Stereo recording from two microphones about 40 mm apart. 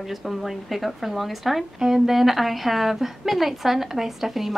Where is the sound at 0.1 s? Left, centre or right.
Centre.